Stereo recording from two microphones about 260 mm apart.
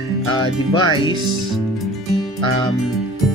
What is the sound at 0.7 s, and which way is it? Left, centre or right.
Music, centre.